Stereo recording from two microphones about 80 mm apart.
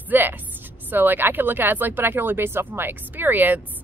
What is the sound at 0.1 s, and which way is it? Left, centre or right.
Speech, right.